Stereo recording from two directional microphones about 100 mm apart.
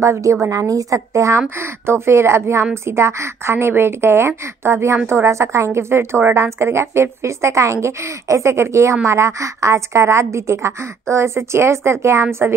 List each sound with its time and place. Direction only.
0.0 s a woman's voice: 30° right (ahead or behind)